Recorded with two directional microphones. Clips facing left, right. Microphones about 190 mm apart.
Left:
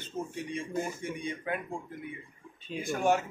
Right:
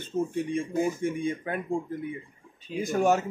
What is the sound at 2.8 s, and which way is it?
Speech, 40° right (ahead or behind).